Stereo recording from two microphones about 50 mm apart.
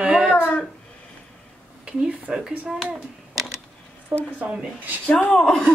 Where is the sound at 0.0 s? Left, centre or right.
Centre.